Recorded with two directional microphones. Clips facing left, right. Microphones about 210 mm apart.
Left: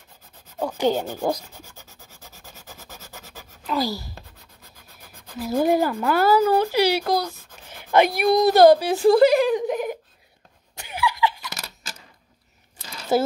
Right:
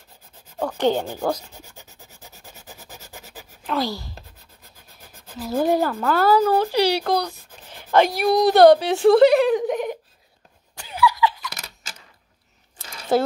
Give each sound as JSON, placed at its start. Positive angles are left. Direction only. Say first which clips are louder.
{"t": 0.6, "sound": "speech", "louder": "right 1 dB", "side_deg": 10}
{"t": 1.6, "sound": "rub", "louder": "right 1 dB", "side_deg": -15}
{"t": 3.6, "sound": "speech", "louder": "even", "side_deg": 0}
{"t": 5.4, "sound": "speech", "louder": "even", "side_deg": 15}
{"t": 7.7, "sound": "a sound", "louder": "even", "side_deg": 15}
{"t": 8.3, "sound": "a woman's voice", "louder": "even", "side_deg": -15}
{"t": 8.5, "sound": "a woman's voice", "louder": "right 2 dB", "side_deg": 0}
{"t": 10.8, "sound": "laughter", "louder": "right 3 dB", "side_deg": 25}
{"t": 13.1, "sound": "speech", "louder": "right 1 dB", "side_deg": 0}